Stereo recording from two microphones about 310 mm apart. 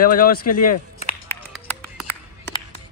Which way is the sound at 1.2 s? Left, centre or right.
Centre.